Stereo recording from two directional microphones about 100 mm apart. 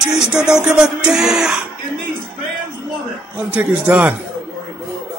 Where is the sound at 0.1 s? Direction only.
5° right (ahead or behind).